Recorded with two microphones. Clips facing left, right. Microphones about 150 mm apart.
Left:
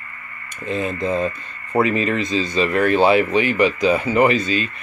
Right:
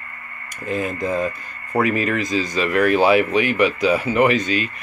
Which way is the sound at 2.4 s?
30° left (ahead or behind).